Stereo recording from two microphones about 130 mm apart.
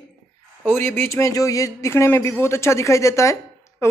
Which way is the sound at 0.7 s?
20° left (ahead or behind).